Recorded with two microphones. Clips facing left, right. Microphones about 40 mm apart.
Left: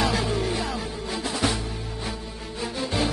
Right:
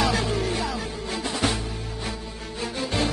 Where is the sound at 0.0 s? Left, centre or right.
Centre.